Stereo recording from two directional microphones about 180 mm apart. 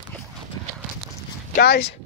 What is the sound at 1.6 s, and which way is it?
Speech, 70° left (ahead or behind).